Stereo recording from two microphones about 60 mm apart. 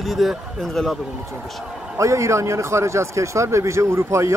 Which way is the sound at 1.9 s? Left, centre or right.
Right.